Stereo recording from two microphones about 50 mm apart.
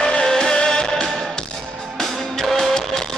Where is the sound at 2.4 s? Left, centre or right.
Centre.